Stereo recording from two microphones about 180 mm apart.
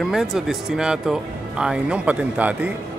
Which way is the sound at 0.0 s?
Centre (ahead or behind).